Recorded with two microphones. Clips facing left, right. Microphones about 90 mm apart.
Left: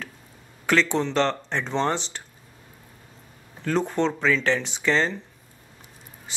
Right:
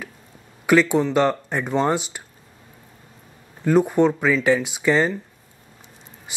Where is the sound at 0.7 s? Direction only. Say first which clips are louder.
Right 5 dB; 10° right (ahead or behind).